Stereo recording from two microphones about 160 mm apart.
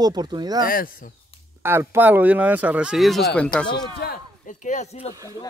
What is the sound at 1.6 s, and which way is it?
Speech, 15° right (ahead or behind).